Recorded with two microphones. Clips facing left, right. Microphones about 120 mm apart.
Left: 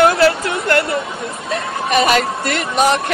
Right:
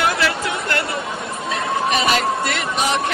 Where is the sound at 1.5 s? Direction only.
50° left (ahead or behind).